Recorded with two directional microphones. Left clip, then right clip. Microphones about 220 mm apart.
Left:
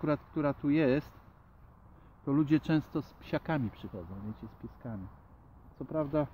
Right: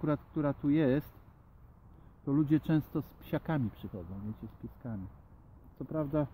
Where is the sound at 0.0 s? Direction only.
10° right (ahead or behind).